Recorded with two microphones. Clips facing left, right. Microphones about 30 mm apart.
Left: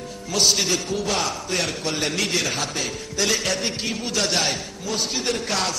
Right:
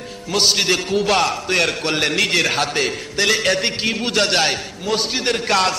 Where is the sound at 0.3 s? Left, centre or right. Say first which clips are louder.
Right 4 dB; right.